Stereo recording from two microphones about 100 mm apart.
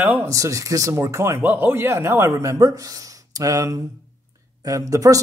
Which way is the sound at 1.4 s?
15° right (ahead or behind).